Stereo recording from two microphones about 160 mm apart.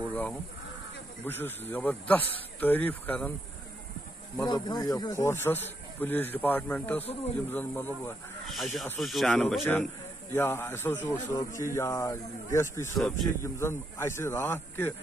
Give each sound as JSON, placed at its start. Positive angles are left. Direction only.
{"t": 0.0, "sound": "a sound", "side_deg": 10}
{"t": 1.2, "sound": "speech", "side_deg": 15}
{"t": 4.4, "sound": "speech", "side_deg": 25}
{"t": 9.0, "sound": "speech", "side_deg": 0}
{"t": 12.9, "sound": "speech", "side_deg": 0}
{"t": 13.4, "sound": "speech", "side_deg": 15}